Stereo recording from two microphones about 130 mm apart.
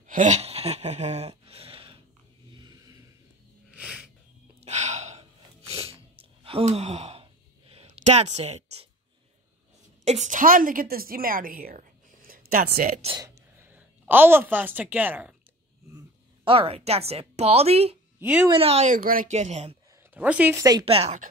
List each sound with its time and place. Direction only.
0.0 s a sound: 75° right (ahead or behind); by 2.0 s 45° right (ahead or behind)
2.5 s a sound: 30° right (ahead or behind)
3.7 s sneeze: 5° right (ahead or behind)
4.6 s gasp: 60° right (ahead or behind)
5.7 s gasp: 50° right (ahead or behind)
7.7 s a woman's voice: 55° right (ahead or behind)
10.0 s a woman's voice: 65° right (ahead or behind); by 13.0 s 90° right
13.2 s speech: 20° right (ahead or behind)
16.4 s a woman's voice: 45° right (ahead or behind)
18.2 s a woman's voice: 10° right (ahead or behind)
18.5 s a woman's voice: 50° right (ahead or behind)
18.9 s speech: 90° right; by 19.8 s 55° right (ahead or behind)
20.2 s a woman's voice: 10° right (ahead or behind)
20.8 s a woman's voice: 50° right (ahead or behind)